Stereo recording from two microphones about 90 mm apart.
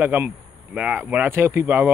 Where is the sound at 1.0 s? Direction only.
20° right (ahead or behind).